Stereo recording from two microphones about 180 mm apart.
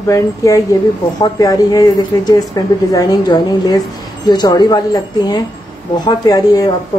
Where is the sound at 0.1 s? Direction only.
20° left (ahead or behind).